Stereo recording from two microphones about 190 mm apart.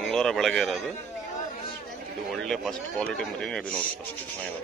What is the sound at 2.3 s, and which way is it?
Speech, centre (ahead or behind).